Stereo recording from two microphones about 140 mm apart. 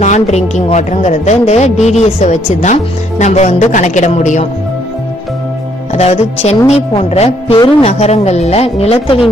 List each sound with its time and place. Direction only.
0.0 s a woman's voice: 55° left (ahead or behind)
5.9 s speech: 50° left (ahead or behind)